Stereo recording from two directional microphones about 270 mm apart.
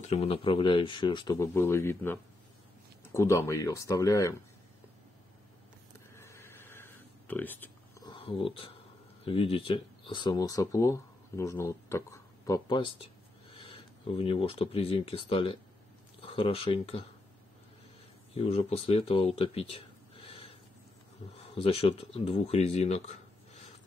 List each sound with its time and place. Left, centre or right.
0.0 s speech: left
6.1 s a sound: centre
9.2 s speech: left
18.3 s speech: left